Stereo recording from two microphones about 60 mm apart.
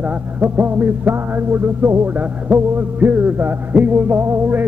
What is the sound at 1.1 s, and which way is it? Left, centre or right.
Music, right.